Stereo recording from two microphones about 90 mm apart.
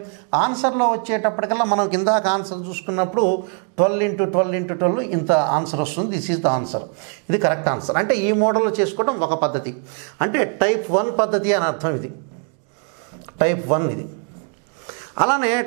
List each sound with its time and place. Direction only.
0.3 s speech: 15° right (ahead or behind)
13.4 s speech: 15° right (ahead or behind)